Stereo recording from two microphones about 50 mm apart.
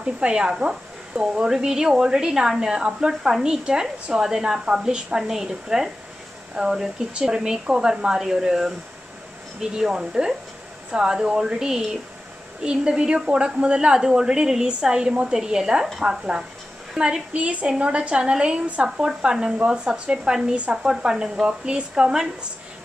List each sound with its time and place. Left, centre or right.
0.0 s a woman's voice: centre
17.3 s a woman's voice: right